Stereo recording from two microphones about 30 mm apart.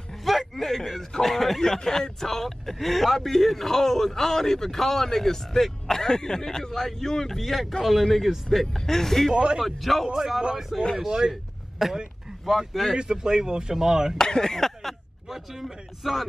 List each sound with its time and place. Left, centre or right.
0.2 s a sound: centre
1.1 s speech: centre
7.3 s a man's voice: centre
8.7 s speech: centre
9.3 s speech: right
9.6 s a man's voice: centre
11.1 s speech: right
11.8 s a man's voice: centre
12.9 s speech: right
14.1 s speech: left
15.2 s speech: centre